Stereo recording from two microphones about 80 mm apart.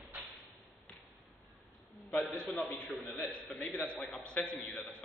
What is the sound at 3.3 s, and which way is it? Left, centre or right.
A man's voice, centre.